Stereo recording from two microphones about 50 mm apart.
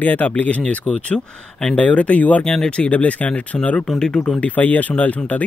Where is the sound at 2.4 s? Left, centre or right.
Centre.